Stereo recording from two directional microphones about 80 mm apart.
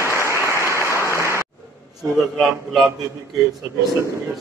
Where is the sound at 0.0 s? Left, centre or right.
Left.